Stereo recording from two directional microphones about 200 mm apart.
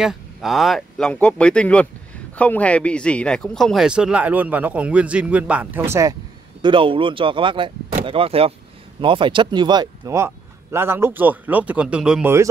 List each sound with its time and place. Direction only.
0.0 s a man's voice: centre (ahead or behind)
6.6 s speech: 25° right (ahead or behind); by 12.4 s 10° right (ahead or behind)